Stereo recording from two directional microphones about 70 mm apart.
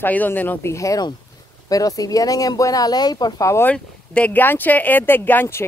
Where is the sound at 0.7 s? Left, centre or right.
Left.